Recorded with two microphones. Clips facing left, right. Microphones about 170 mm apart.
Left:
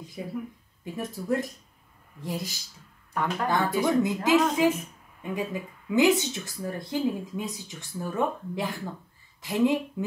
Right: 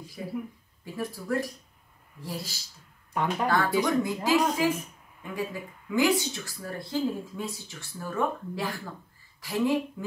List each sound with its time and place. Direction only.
0.2 s speech: 20° left (ahead or behind)
3.1 s speech: 15° right (ahead or behind)
3.4 s speech: 20° left (ahead or behind)